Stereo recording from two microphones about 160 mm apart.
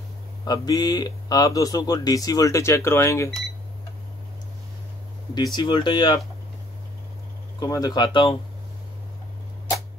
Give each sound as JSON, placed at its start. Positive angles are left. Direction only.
{"t": 0.5, "sound": "a man's voice", "side_deg": 25}
{"t": 5.3, "sound": "a man's voice", "side_deg": 25}
{"t": 7.6, "sound": "a man's voice", "side_deg": 25}